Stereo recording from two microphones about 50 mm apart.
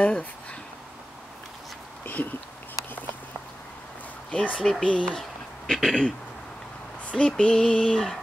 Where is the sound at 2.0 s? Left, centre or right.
Left.